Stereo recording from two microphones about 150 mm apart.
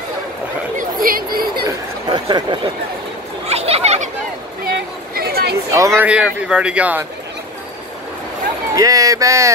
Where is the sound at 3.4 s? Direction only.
45° right (ahead or behind).